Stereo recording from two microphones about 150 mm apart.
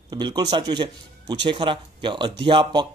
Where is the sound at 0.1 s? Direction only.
30° right (ahead or behind).